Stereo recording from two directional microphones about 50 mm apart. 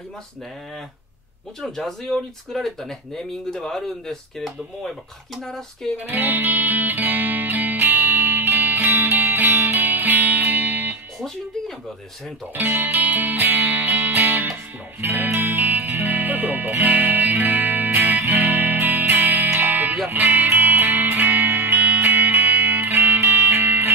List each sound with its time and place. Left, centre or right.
1.6 s speech: centre
6.0 s music: right
11.1 s music: centre
12.5 s music: right